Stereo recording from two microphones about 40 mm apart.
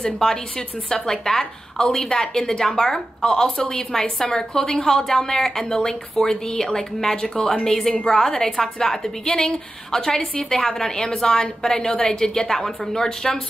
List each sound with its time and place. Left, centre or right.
0.0 s speech: centre